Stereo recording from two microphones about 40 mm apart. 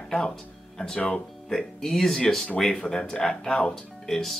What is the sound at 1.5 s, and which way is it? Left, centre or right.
Speech, centre.